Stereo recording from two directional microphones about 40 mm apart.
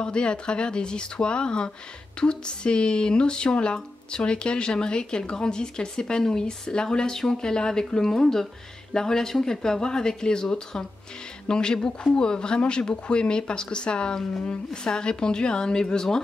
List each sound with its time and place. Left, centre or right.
0.0 s speech: left